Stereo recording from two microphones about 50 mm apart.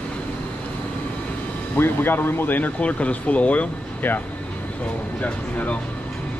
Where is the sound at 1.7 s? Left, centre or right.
Left.